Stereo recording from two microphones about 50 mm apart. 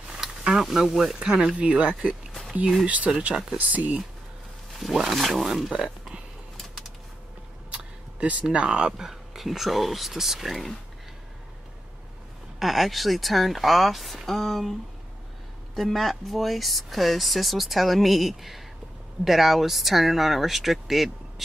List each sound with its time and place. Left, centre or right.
0.4 s speech: centre; by 2.1 s right
3.1 s speech: centre
3.5 s speech: right
4.7 s speech: centre
7.7 s speech: right; by 10.8 s centre
12.5 s speech: centre